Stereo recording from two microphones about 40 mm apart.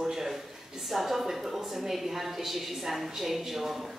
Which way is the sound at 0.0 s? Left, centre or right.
Centre.